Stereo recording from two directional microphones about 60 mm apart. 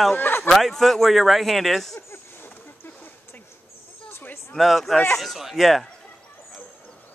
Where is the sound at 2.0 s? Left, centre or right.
Left.